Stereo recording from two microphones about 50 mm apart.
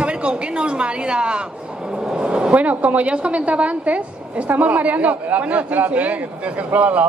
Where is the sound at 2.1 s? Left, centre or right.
Centre.